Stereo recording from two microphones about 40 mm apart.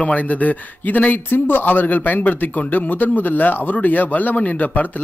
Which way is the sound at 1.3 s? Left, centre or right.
Left.